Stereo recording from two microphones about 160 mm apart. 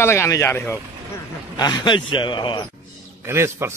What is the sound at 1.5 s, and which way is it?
A man's voice, 25° left (ahead or behind).